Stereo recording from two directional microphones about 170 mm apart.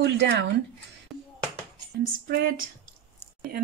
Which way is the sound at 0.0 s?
90° right.